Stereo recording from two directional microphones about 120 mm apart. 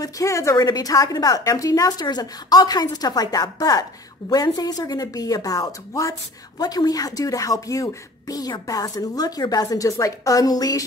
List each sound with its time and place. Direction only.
0.0 s speech: 25° left (ahead or behind)